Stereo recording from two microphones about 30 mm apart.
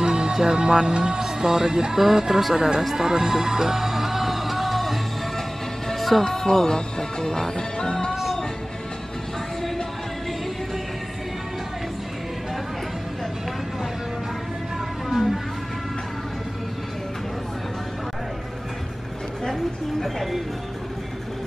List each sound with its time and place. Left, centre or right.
0.0 s speech: right
2.0 s speech: centre
3.0 s music: centre
5.9 s music: centre
6.2 s speech: left
20.0 s speech: centre